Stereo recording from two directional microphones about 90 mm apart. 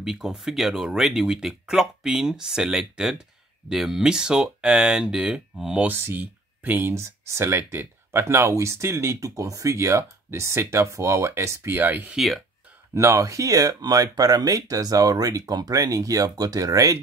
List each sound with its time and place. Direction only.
0.0 s speech: 5° right (ahead or behind)
5.9 s speech: 20° right (ahead or behind)
12.2 s speech: centre (ahead or behind)
12.9 s speech: 35° right (ahead or behind)